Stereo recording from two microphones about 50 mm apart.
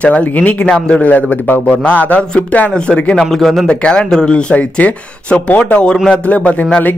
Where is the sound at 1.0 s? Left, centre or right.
Left.